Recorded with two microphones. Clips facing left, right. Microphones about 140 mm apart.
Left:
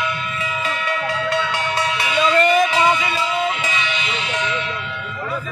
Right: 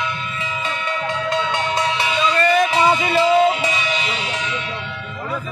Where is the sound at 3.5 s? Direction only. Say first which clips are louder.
Right 2 dB; 35° right (ahead or behind).